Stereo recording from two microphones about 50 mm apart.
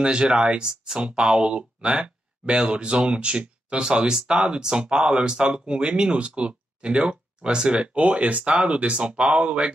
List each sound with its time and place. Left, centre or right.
0.0 s speech: centre